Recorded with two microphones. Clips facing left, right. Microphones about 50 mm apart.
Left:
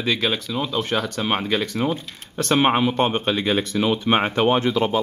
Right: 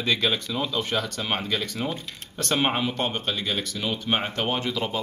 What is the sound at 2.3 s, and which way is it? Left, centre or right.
Speech, centre.